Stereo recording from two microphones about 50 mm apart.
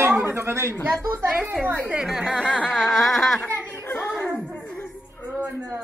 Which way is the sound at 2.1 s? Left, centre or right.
Centre.